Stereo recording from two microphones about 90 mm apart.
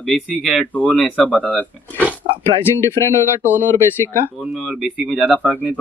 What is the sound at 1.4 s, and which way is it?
Speech, 10° left (ahead or behind).